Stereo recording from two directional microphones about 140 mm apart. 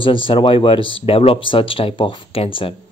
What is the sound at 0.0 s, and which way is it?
Speech, 35° left (ahead or behind).